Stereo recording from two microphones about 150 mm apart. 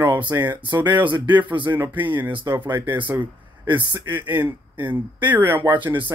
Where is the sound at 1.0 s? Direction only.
10° right (ahead or behind).